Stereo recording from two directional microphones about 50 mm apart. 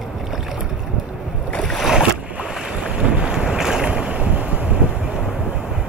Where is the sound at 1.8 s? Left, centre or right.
Centre.